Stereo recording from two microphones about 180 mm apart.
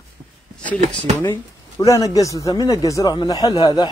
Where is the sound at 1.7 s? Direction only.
20° left (ahead or behind).